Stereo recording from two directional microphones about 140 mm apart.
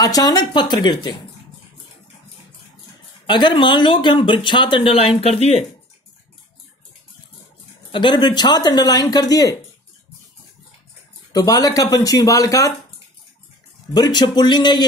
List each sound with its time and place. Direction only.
0.0 s speech: 25° left (ahead or behind)
3.3 s speech: 35° left (ahead or behind)
7.9 s speech: 35° left (ahead or behind)
11.3 s speech: 25° left (ahead or behind)
13.9 s speech: 30° left (ahead or behind)